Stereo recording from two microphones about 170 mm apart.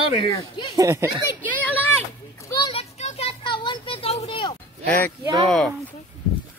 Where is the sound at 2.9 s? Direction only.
40° left (ahead or behind).